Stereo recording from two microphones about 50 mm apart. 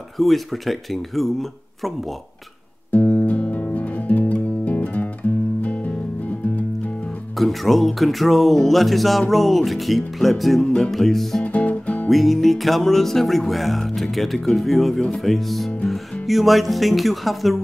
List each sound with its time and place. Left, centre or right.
0.2 s speech: centre
2.9 s music: left
7.3 s speech: centre
10.6 s music: centre
10.9 s speech: centre
11.4 s music: left
12.1 s speech: centre